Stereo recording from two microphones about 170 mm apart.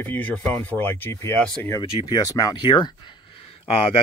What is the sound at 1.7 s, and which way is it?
Speech, 20° left (ahead or behind).